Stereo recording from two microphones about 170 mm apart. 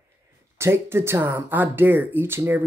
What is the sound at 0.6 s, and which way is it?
Speech, 15° right (ahead or behind).